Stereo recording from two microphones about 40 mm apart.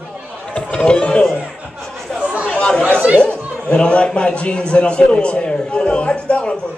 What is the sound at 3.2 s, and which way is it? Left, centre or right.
A man's voice, left.